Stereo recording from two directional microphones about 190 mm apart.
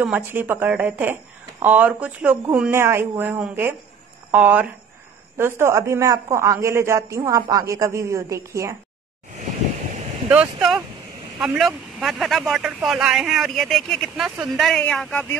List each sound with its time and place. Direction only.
0.0 s speech: 10° right (ahead or behind)
10.3 s speech: 5° right (ahead or behind)